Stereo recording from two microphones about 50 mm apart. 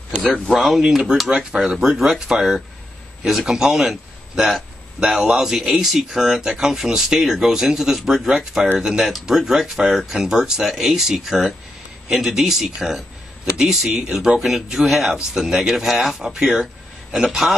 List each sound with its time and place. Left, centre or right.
0.5 s speech: centre